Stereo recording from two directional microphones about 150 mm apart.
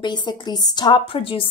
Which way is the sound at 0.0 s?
30° left (ahead or behind).